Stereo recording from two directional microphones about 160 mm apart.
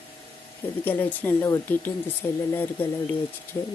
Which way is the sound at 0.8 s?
15° left (ahead or behind).